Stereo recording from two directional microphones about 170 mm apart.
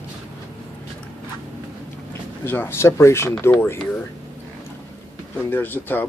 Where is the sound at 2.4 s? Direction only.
15° left (ahead or behind).